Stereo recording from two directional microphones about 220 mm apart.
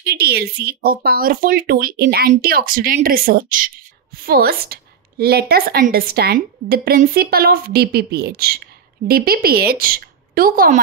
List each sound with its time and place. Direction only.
0.0 s a woman's voice: 45° right (ahead or behind)